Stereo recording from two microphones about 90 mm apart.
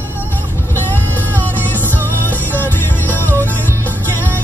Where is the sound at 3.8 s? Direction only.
25° right (ahead or behind).